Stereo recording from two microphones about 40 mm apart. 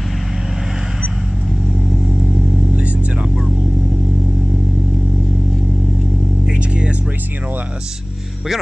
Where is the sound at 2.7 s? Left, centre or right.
Right.